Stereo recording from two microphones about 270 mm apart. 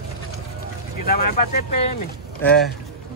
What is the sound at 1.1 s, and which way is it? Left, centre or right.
Speech, left.